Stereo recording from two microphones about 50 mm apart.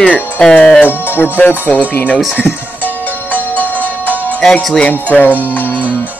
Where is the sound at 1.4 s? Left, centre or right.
Left.